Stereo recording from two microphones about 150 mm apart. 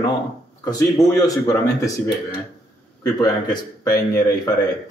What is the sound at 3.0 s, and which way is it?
Speech, 25° left (ahead or behind).